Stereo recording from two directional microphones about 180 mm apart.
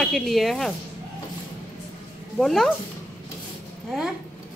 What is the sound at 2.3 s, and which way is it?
Speech, centre (ahead or behind).